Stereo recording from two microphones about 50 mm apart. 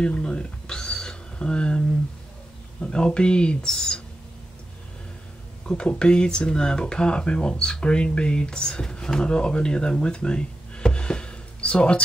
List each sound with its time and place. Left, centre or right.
0.0 s speech: left
5.7 s speech: centre